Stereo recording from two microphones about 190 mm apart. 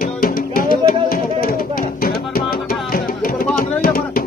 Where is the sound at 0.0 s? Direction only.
50° left (ahead or behind).